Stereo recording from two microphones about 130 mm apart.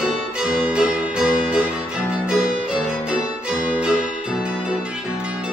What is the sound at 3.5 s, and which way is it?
Music, 10° right (ahead or behind).